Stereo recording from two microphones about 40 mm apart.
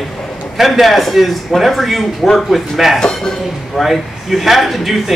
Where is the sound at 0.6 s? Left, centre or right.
Centre.